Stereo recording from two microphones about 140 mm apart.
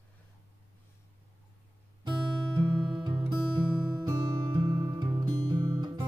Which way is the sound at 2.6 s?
35° right (ahead or behind).